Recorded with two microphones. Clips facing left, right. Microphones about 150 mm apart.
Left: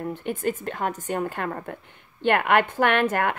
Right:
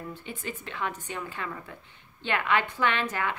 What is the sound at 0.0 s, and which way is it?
A woman's voice, 55° left (ahead or behind).